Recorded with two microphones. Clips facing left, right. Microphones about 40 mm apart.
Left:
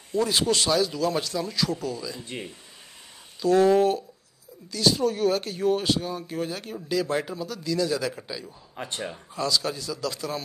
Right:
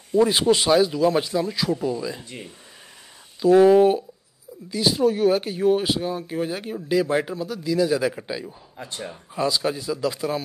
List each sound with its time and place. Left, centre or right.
0.1 s speech: centre
3.3 s a man's voice: centre
8.7 s speech: left
9.3 s a man's voice: centre